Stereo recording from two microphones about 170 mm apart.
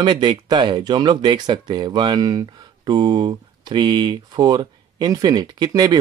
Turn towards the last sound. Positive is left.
turn(degrees=-25)  # may be behind; listen again after turning